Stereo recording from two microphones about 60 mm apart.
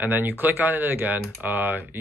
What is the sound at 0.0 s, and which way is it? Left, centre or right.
Speech, right.